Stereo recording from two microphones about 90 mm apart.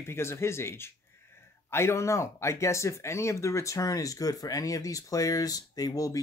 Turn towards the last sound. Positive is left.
turn(degrees=40)  # may be behind; listen again after turning